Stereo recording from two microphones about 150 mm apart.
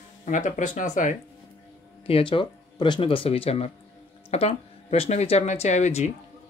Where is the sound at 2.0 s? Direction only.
35° left (ahead or behind).